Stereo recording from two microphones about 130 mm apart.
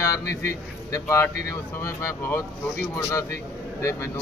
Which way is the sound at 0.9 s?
20° left (ahead or behind).